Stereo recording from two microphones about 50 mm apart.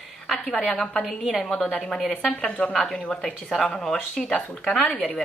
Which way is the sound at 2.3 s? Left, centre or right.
Left.